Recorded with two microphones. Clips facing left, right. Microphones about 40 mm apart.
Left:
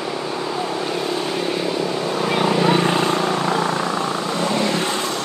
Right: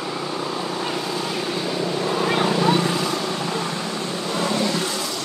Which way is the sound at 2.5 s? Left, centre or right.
Left.